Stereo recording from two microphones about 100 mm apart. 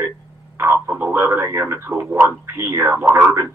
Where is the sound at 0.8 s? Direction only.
20° right (ahead or behind).